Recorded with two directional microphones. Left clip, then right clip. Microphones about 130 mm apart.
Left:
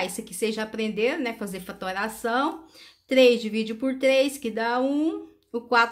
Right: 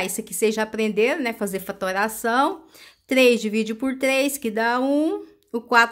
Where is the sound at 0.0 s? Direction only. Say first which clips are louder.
Right 5 dB; 35° right (ahead or behind).